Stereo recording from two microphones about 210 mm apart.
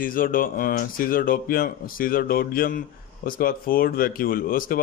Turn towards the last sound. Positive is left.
turn(degrees=45)  # may be behind; listen again after turning